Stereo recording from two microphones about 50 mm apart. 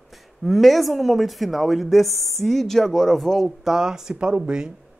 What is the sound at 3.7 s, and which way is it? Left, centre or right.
Speech, centre.